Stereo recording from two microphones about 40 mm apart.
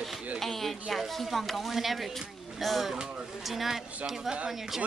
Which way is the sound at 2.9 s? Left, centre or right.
Centre.